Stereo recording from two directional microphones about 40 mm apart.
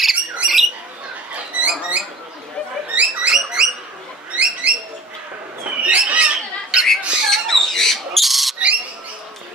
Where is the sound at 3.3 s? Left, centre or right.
Centre.